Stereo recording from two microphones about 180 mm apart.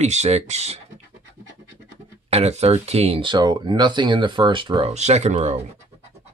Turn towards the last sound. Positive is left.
turn(degrees=-40)  # may be behind; listen again after turning